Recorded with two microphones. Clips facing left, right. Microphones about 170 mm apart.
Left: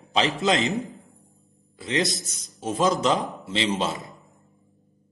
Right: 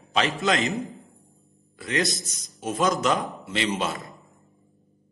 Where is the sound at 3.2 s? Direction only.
Centre (ahead or behind).